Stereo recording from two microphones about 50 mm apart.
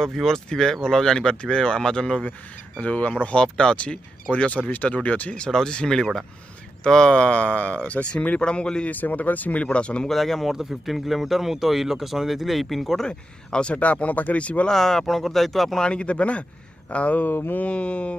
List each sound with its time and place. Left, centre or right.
0.0 s speech: centre
2.8 s speech: left
5.3 s speech: centre
8.8 s speech: left
10.0 s speech: centre
13.0 s speech: centre
13.7 s speech: left
14.7 s speech: centre
15.8 s speech: left
17.3 s mantra: left
17.6 s speech: left